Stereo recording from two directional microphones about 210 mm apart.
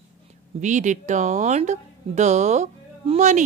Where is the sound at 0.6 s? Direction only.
35° right (ahead or behind).